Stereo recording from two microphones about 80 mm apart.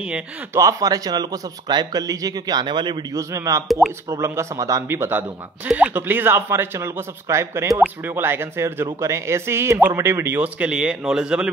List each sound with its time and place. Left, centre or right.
0.6 s a man's voice: right
3.1 s speech: right
4.8 s speech: right
5.7 s speech: centre; by 7.8 s right
7.8 s speech: right
10.4 s speech: centre